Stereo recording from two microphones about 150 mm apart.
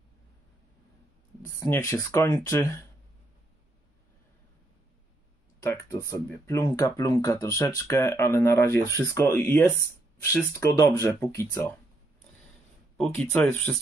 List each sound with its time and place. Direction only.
1.4 s speech: 20° left (ahead or behind)
5.6 s speech: 15° left (ahead or behind)
12.9 s speech: 5° left (ahead or behind)